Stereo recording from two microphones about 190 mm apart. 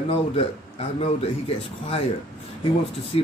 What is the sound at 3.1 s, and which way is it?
Speech, 30° left (ahead or behind).